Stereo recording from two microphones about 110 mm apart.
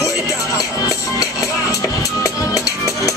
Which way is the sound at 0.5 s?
30° left (ahead or behind).